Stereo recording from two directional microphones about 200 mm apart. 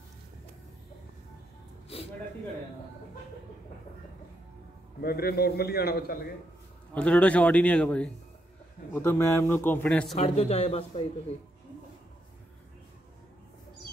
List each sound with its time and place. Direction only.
5.0 s a man's voice: 50° left (ahead or behind)
6.9 s a man's voice: 5° left (ahead or behind)
10.1 s a man's voice: 30° left (ahead or behind)